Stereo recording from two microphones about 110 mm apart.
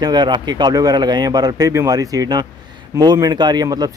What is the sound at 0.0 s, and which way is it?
Speech, 40° right (ahead or behind).